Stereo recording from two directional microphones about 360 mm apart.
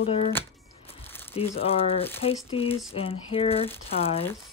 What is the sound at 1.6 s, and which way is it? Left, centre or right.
Speech, centre.